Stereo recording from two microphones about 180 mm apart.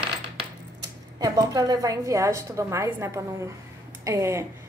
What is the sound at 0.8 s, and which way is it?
A woman's voice, 20° right (ahead or behind).